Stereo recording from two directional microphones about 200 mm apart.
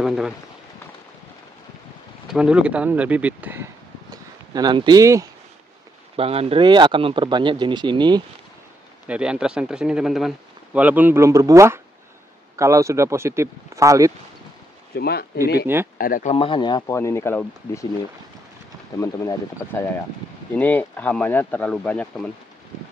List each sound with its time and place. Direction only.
0.0 s speech: 5° right (ahead or behind)
2.2 s speech: 5° right (ahead or behind)
4.6 s speech: 20° right (ahead or behind)
6.1 s speech: 30° right (ahead or behind)
9.0 s speech: 5° right (ahead or behind)
15.0 s speech: 50° left (ahead or behind)
15.6 s speech: 10° right (ahead or behind)
16.0 s speech: 45° left (ahead or behind)
16.3 s speech: 25° left (ahead or behind)
18.9 s speech: 15° left (ahead or behind)